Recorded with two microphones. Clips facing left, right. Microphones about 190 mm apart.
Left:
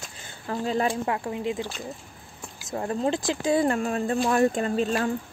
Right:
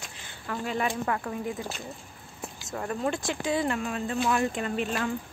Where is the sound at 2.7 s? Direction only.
30° left (ahead or behind).